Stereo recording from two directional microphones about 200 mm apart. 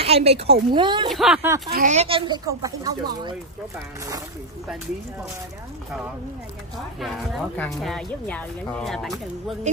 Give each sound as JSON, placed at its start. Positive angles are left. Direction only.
{"t": 0.0, "sound": "a woman's voice", "side_deg": -30}
{"t": 1.1, "sound": "speech", "side_deg": -5}
{"t": 1.7, "sound": "a child's voice", "side_deg": -40}
{"t": 7.0, "sound": "speech", "side_deg": 5}